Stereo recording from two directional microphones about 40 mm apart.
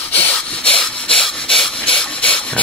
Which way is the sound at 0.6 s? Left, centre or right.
Left.